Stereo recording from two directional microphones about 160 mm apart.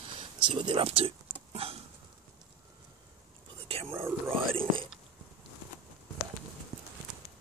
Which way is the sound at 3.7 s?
40° right (ahead or behind).